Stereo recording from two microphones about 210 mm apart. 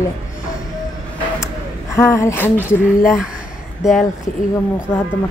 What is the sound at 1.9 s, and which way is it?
Speech, 15° left (ahead or behind).